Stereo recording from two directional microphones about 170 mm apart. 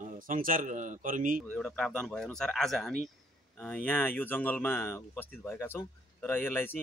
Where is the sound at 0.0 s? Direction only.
55° right (ahead or behind).